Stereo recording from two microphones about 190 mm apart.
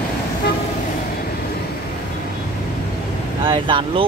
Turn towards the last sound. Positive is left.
turn(degrees=-25)  # may be behind; listen again after turning